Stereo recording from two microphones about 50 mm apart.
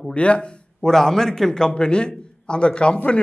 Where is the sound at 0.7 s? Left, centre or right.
Centre.